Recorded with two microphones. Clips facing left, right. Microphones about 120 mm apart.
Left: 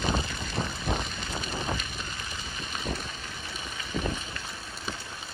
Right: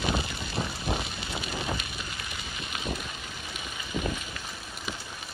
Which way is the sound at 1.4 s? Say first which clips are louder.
Even; 35° left (ahead or behind).